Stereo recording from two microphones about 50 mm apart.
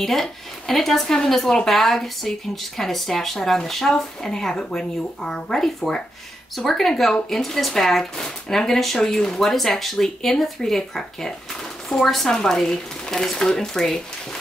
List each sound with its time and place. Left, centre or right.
0.0 s speech: centre
5.2 s speech: centre